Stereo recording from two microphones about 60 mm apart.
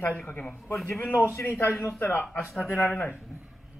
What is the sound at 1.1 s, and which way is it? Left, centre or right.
A man's voice, left.